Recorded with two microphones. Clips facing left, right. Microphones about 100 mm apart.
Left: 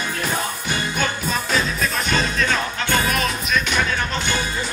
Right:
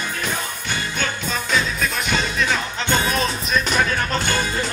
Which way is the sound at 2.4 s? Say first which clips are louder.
Even; 25° right (ahead or behind).